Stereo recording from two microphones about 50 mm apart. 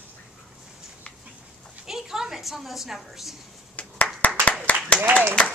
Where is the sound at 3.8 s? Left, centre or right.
Left.